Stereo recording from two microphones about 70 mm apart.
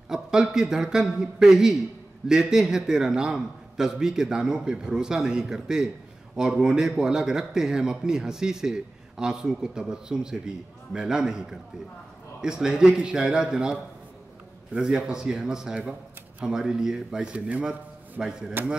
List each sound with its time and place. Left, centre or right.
0.1 s a man's voice: centre
18.2 s a man's voice: centre